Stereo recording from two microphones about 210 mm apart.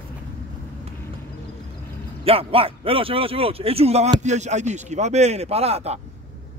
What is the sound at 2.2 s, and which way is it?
A man's voice, 25° right (ahead or behind).